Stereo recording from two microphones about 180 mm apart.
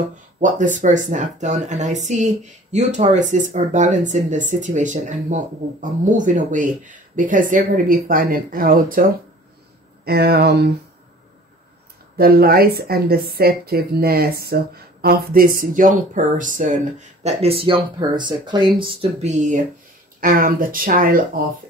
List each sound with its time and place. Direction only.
0.4 s speech: 45° right (ahead or behind)
10.0 s speech: 60° right (ahead or behind)
12.2 s speech: 55° right (ahead or behind)